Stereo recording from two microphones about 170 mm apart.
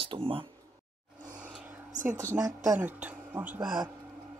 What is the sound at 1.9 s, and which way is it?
Speech, 50° right (ahead or behind).